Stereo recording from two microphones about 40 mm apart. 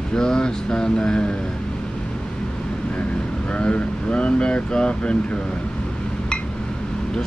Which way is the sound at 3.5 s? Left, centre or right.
Left.